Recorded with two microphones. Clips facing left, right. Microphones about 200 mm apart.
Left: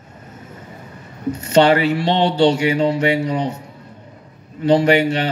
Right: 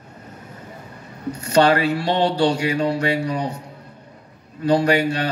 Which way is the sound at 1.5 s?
25° left (ahead or behind).